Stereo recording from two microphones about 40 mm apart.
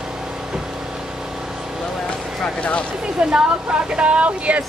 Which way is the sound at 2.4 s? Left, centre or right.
Left.